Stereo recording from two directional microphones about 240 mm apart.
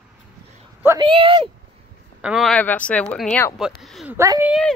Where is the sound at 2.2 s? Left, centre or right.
Centre.